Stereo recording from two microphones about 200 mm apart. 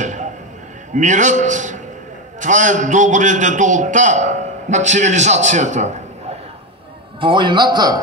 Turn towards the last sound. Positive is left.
turn(degrees=-20)  # may be behind; listen again after turning